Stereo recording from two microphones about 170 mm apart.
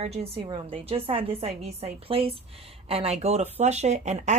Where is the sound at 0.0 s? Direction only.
35° right (ahead or behind).